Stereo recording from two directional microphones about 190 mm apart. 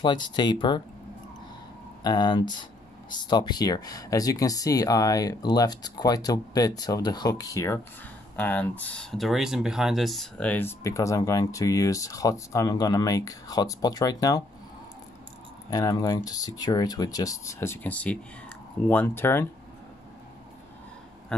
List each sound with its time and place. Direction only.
0.0 s speech: 25° left (ahead or behind)
2.0 s speech: 20° left (ahead or behind)
15.7 s speech: 20° left (ahead or behind)
21.3 s a sound: 5° left (ahead or behind)